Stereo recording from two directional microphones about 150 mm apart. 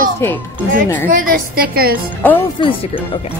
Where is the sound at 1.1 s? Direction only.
65° right (ahead or behind).